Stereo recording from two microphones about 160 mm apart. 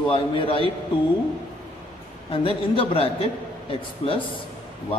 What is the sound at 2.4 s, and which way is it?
Speech, 35° left (ahead or behind).